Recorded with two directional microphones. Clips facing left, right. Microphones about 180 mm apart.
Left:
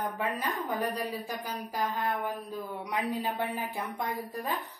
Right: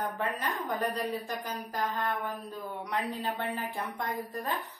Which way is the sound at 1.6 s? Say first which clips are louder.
Left 2 dB; 15° left (ahead or behind).